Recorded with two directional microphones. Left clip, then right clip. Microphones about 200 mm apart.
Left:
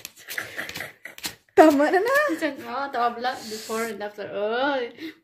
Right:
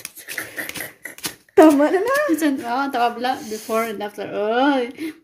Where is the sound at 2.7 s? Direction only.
55° right (ahead or behind).